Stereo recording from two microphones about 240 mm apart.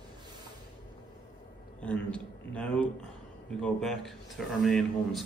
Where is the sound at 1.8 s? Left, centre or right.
Centre.